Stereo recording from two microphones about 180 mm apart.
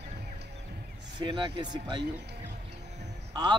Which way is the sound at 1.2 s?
25° right (ahead or behind).